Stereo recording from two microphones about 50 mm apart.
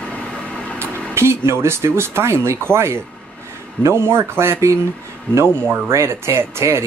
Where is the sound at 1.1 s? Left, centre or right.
Right.